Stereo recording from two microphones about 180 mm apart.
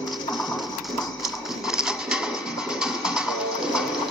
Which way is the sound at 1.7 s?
5° right (ahead or behind).